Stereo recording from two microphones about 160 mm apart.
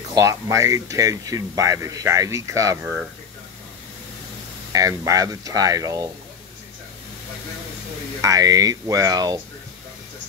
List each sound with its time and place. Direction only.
0.1 s speech: 20° right (ahead or behind)
4.7 s speech: 20° right (ahead or behind)
8.2 s speech: 20° right (ahead or behind)